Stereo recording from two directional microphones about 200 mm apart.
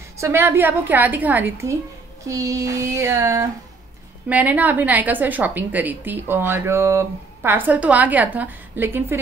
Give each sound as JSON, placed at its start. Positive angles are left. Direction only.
{"t": 0.2, "sound": "a woman's voice", "side_deg": -10}